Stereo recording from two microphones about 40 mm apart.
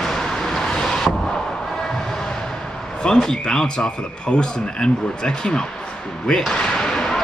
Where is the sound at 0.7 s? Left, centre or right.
Centre.